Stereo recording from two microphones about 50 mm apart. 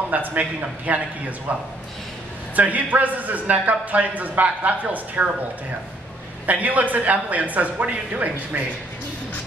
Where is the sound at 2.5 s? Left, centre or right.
Right.